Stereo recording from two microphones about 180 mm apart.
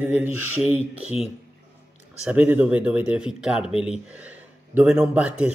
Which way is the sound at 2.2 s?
5° right (ahead or behind).